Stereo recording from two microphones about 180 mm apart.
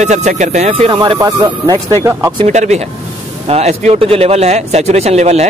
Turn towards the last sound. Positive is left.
turn(degrees=-35)  # may be behind; listen again after turning